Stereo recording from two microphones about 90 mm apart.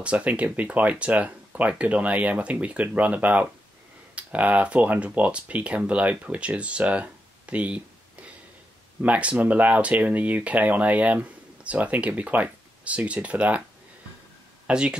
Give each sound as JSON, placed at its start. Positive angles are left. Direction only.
{"t": 0.0, "sound": "speech", "side_deg": -15}
{"t": 14.7, "sound": "speech", "side_deg": -10}